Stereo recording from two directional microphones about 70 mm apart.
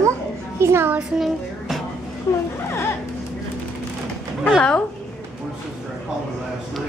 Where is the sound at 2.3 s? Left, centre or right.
Left.